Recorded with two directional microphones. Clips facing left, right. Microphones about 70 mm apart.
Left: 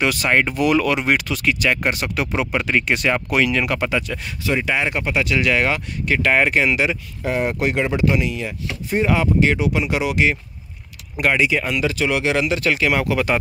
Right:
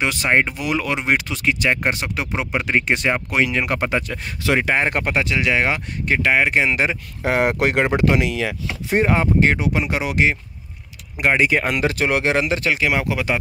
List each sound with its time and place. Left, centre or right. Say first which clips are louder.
0.0 s speech: even; right
5.2 s speech: left 3 dB; right
7.2 s speech: right 2 dB; right
9.0 s speech: even; right
11.3 s speech: right 1 dB; right
12.4 s speech: even; right